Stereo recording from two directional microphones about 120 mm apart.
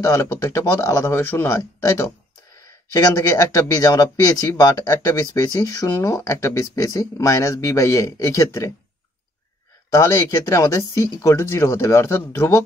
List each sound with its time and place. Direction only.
0.0 s speech: 25° left (ahead or behind)
2.9 s speech: 30° left (ahead or behind)
9.8 s speech: 25° left (ahead or behind)